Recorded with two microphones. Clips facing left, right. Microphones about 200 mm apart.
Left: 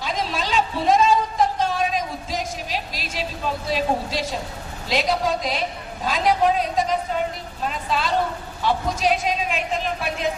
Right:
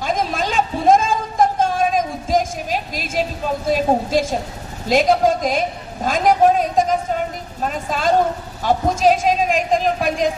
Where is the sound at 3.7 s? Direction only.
50° right (ahead or behind).